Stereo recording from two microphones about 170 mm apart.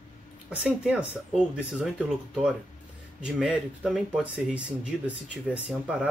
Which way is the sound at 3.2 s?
5° right (ahead or behind).